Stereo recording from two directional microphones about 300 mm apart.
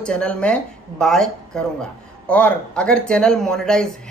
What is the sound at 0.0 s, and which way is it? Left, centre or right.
Speech, centre.